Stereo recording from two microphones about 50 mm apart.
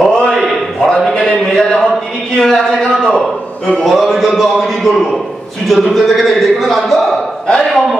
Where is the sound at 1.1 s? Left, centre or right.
Left.